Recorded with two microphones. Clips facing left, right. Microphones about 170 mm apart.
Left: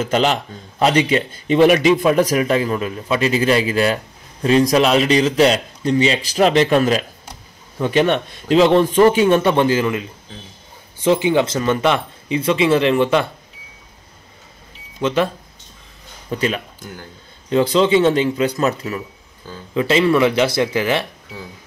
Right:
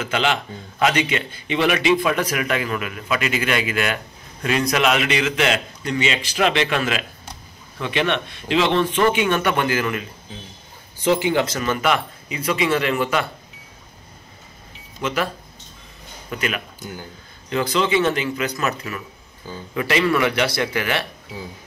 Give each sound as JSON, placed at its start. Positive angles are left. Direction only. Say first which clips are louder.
{"t": 0.0, "sound": "a man's voice", "louder": "left 5 dB", "side_deg": 40}
{"t": 11.1, "sound": "speech", "louder": "left 3 dB", "side_deg": 20}
{"t": 15.0, "sound": "speech", "louder": "left 6 dB", "side_deg": 25}
{"t": 16.3, "sound": "speech", "louder": "left 5 dB", "side_deg": 30}